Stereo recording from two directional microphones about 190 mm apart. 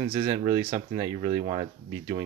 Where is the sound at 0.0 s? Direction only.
20° right (ahead or behind).